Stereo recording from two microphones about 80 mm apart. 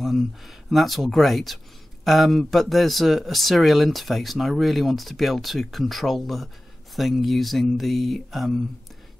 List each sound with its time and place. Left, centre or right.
0.0 s speech: centre